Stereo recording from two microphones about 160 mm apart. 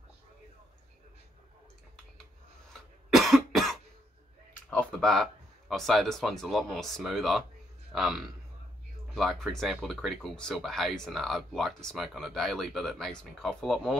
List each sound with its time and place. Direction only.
3.1 s cough: centre (ahead or behind)
4.6 s a man's voice: 5° left (ahead or behind)